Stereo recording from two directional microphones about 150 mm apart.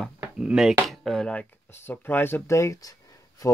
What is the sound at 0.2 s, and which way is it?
Speech, 5° right (ahead or behind).